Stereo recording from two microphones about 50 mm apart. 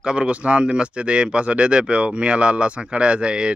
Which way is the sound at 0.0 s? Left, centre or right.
Right.